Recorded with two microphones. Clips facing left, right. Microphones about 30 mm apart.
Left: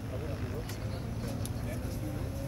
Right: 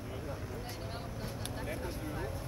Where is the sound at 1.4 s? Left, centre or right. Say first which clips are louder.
Even; right.